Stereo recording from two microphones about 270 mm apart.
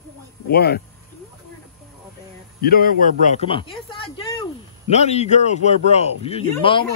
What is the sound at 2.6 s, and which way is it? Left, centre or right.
Speech, left.